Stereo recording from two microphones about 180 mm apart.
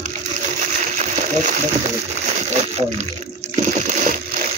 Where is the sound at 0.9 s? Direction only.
45° right (ahead or behind).